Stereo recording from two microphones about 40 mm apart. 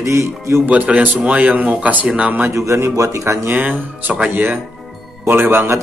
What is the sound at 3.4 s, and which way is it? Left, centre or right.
Speech, right.